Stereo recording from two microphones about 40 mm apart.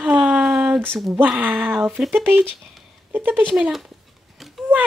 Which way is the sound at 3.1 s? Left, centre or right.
Right.